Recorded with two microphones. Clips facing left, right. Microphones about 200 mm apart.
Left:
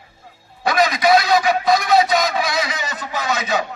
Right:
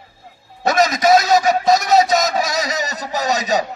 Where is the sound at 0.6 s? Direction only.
45° right (ahead or behind).